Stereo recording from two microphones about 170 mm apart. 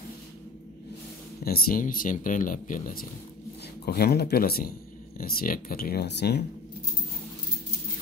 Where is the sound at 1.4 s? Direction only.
60° left (ahead or behind).